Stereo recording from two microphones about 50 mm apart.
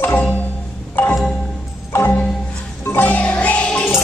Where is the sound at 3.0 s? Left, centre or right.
Left.